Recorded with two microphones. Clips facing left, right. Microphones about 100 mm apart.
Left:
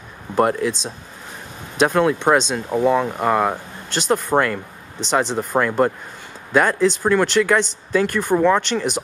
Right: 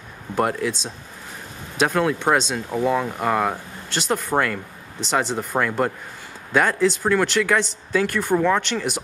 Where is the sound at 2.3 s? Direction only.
10° left (ahead or behind).